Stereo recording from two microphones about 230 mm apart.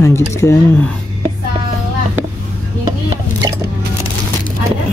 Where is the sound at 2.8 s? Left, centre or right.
Centre.